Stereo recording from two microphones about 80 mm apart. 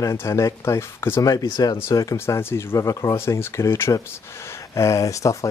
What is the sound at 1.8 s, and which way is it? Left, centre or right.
Speech, left.